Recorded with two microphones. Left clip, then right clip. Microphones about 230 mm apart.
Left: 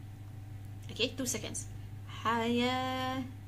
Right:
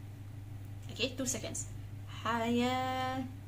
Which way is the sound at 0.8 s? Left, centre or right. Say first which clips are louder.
Left 2 dB; centre.